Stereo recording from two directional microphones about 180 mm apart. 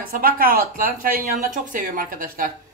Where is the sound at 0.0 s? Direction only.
50° right (ahead or behind).